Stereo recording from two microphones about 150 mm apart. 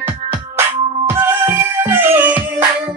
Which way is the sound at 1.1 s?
15° right (ahead or behind).